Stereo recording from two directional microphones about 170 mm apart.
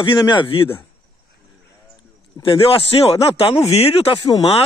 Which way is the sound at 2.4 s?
35° left (ahead or behind).